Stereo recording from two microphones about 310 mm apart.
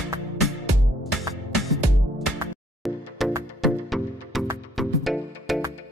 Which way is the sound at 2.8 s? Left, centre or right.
Centre.